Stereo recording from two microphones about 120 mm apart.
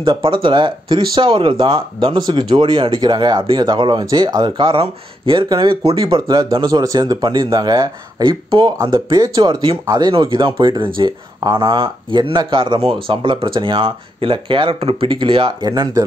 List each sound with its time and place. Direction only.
0.2 s speech: 45° right (ahead or behind)
6.2 s speech: 30° right (ahead or behind)